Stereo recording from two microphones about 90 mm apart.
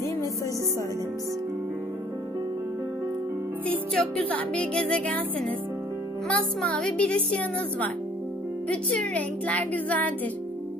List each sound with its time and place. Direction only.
3.9 s a woman's voice: 15° left (ahead or behind)
6.2 s a woman's voice: 15° left (ahead or behind)